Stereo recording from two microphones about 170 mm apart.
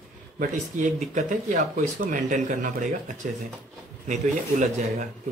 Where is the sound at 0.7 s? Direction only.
45° right (ahead or behind).